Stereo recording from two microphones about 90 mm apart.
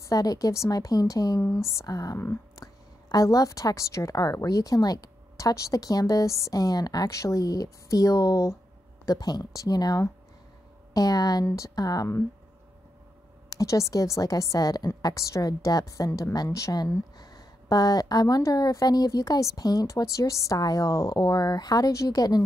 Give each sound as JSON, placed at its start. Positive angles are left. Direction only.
{"t": 0.0, "sound": "a woman's voice", "side_deg": 40}
{"t": 13.5, "sound": "a woman's voice", "side_deg": 40}